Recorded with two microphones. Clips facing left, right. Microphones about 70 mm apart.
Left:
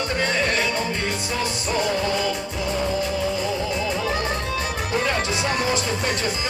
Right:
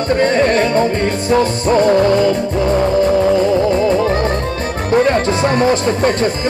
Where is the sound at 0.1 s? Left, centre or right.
Right.